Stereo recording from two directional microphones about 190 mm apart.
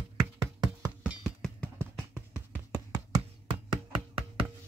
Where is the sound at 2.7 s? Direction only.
20° right (ahead or behind).